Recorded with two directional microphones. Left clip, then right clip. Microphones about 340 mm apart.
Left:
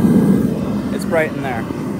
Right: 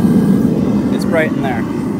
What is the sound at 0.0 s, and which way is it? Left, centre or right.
Vehicle, centre.